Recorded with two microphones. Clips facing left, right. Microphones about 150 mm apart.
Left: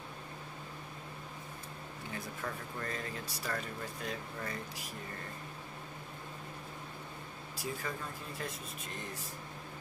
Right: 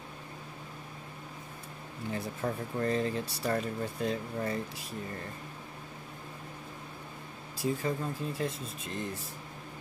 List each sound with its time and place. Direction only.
2.1 s speech: 30° right (ahead or behind)
7.5 s speech: 25° right (ahead or behind)